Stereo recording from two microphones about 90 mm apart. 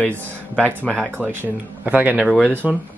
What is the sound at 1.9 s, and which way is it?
Speech, 15° right (ahead or behind).